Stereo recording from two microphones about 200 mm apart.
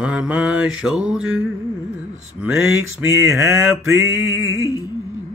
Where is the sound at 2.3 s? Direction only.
5° right (ahead or behind).